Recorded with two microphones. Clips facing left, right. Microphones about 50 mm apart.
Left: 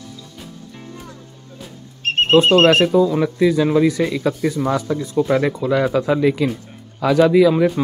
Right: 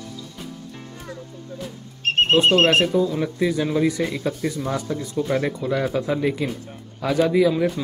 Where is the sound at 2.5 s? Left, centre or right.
Left.